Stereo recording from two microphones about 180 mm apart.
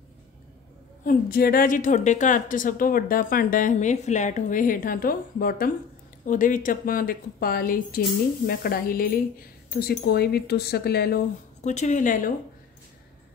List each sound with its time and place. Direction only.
1.0 s a woman's voice: 55° left (ahead or behind)
11.6 s a woman's voice: 40° left (ahead or behind)